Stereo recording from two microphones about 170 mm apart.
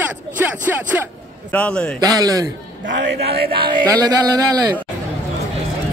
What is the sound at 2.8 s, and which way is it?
Speech, 70° right (ahead or behind).